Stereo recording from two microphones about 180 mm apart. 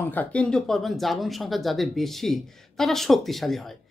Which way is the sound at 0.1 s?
10° left (ahead or behind).